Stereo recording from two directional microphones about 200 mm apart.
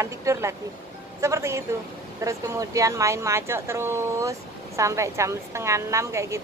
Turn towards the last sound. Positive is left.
turn(degrees=-15)  # may be behind; listen again after turning